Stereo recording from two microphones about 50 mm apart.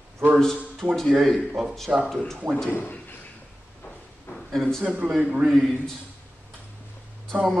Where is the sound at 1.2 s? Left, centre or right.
Centre.